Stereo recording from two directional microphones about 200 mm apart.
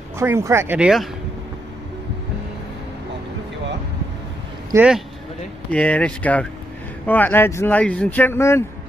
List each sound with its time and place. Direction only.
0.2 s speech: 15° right (ahead or behind)
4.7 s speech: 15° right (ahead or behind)
5.7 s speech: 5° left (ahead or behind)